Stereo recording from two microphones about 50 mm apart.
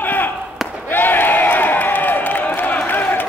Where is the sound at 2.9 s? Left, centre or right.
Left.